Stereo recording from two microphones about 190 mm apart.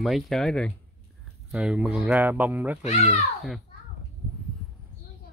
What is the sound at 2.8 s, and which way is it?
Speech, 35° left (ahead or behind).